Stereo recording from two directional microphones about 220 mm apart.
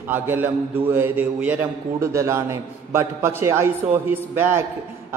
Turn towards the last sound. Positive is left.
turn(degrees=-10)  # may be behind; listen again after turning